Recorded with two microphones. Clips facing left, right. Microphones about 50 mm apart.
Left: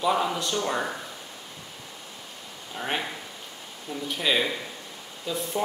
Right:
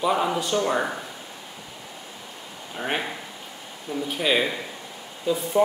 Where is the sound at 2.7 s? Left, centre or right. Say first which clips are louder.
Right 2 dB; centre.